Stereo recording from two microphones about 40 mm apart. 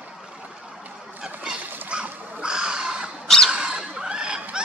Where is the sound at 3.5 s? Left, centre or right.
Centre.